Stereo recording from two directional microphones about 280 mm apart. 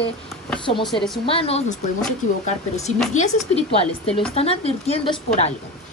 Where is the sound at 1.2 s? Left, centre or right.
Centre.